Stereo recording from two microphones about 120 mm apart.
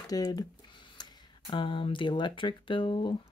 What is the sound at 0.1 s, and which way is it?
Speech, 30° left (ahead or behind).